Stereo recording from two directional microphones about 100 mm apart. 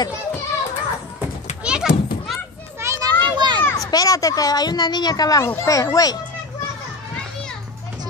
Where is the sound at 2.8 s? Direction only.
30° right (ahead or behind).